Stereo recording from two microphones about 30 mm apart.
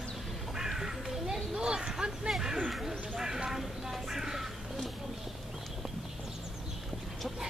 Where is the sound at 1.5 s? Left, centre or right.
Right.